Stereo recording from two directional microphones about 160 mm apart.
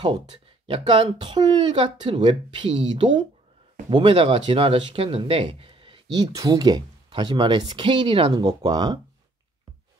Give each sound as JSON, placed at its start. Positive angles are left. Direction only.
{"t": 0.3, "sound": "speech", "side_deg": -35}